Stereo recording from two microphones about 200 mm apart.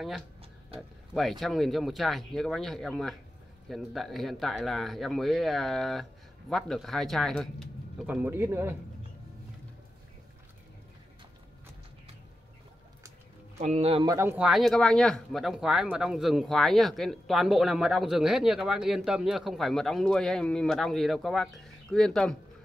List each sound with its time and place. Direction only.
0.7 s speech: centre (ahead or behind)
8.1 s speech: 10° right (ahead or behind)
13.6 s speech: 35° right (ahead or behind)
14.0 s speech: 15° right (ahead or behind); by 22.4 s 5° left (ahead or behind)